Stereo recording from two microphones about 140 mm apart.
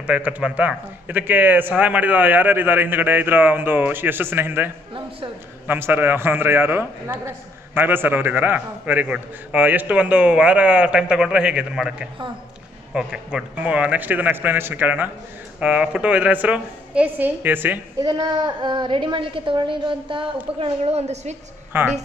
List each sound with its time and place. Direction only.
0.0 s a man's voice: 10° right (ahead or behind)
18.0 s a woman's voice: 30° right (ahead or behind); by 21.4 s 55° right (ahead or behind)
21.7 s a man's voice: 15° right (ahead or behind)